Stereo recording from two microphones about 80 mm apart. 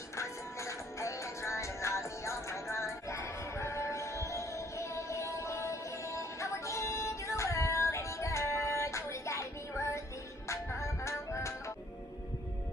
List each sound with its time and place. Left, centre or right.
0.1 s music: left